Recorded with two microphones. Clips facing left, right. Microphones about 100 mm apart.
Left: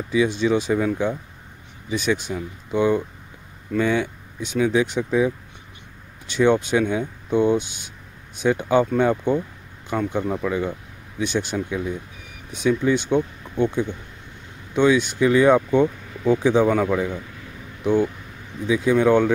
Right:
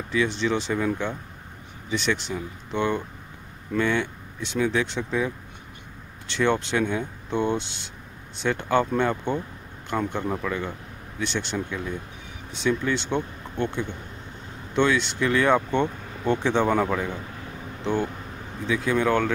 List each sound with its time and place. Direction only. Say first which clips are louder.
0.1 s speech: left 5 dB; 15° left (ahead or behind); by 17.1 s centre (ahead or behind)
18.7 s speech: left 6 dB; 15° left (ahead or behind)